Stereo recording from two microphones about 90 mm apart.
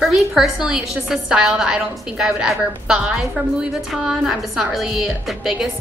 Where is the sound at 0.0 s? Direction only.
Centre (ahead or behind).